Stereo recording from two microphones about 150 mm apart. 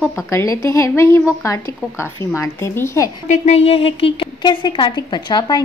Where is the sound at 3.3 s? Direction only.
50° left (ahead or behind).